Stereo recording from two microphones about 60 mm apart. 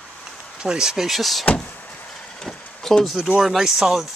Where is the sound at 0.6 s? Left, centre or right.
Centre.